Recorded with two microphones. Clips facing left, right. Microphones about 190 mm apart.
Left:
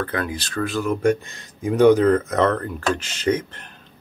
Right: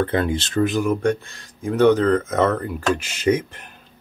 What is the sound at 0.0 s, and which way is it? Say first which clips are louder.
Speech: right 5 dB; 25° right (ahead or behind).